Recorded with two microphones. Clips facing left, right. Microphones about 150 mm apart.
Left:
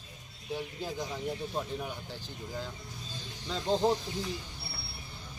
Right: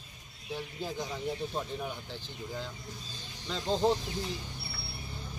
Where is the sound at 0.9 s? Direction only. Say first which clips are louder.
Even; centre (ahead or behind).